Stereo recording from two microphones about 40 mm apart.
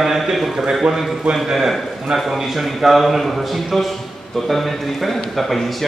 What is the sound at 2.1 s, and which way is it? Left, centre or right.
A man's voice, centre.